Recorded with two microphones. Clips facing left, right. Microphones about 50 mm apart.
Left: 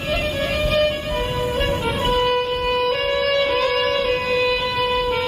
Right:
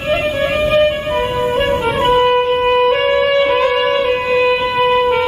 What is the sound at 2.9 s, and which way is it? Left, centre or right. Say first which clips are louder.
Music: right 7 dB; right.